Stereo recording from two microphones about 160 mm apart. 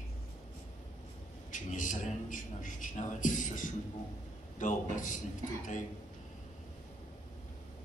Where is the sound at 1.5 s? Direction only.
55° left (ahead or behind).